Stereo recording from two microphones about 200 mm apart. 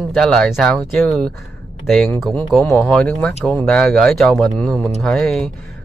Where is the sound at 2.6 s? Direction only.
15° left (ahead or behind).